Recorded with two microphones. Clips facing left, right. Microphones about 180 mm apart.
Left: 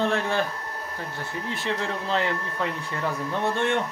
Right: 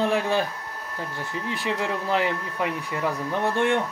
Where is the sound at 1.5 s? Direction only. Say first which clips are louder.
Right 2 dB; 10° right (ahead or behind).